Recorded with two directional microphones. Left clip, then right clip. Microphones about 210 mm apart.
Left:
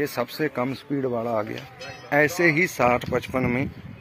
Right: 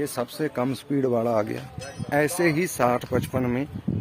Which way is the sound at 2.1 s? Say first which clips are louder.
Left 3 dB; centre (ahead or behind).